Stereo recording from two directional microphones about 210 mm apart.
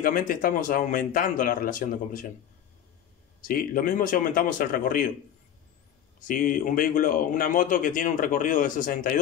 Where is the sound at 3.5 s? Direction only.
40° left (ahead or behind).